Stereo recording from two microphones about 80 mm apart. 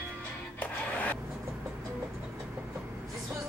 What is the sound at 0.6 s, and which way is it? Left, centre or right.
Music, centre.